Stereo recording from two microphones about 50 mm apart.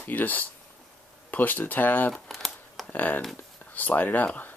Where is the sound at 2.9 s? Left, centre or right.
Left.